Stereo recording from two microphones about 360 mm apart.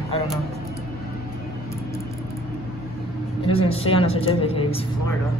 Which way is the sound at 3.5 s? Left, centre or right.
Centre.